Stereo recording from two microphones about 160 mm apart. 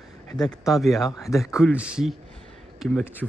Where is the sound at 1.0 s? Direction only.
20° left (ahead or behind).